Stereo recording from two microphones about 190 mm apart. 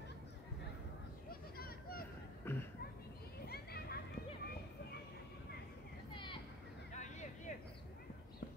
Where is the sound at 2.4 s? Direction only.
10° left (ahead or behind).